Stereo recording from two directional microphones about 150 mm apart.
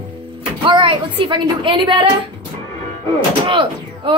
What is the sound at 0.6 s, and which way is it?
A woman's voice, 30° right (ahead or behind).